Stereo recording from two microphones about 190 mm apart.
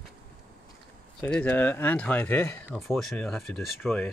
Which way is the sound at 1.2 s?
10° left (ahead or behind).